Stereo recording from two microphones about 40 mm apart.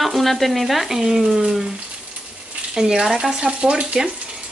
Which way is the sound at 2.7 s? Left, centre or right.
Centre.